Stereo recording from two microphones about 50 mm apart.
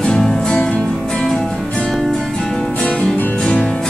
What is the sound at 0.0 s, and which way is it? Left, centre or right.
Music, centre.